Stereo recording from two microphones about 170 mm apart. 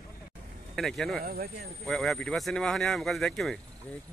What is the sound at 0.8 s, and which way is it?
Speech, centre (ahead or behind).